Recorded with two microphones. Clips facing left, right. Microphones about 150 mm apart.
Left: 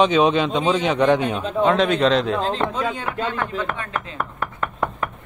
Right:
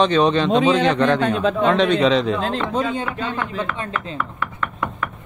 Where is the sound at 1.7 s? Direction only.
Centre (ahead or behind).